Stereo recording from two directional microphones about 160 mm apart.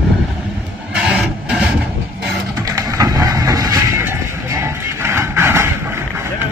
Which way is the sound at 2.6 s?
20° right (ahead or behind).